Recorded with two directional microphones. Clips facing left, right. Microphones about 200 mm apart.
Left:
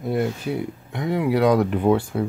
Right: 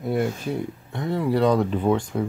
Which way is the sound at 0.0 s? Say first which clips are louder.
Left 1 dB; centre (ahead or behind).